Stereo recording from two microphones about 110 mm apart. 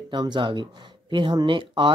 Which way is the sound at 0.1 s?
45° right (ahead or behind).